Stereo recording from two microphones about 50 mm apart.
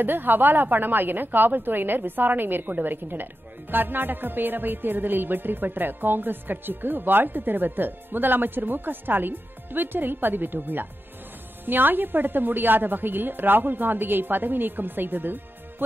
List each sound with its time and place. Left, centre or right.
0.0 s music: right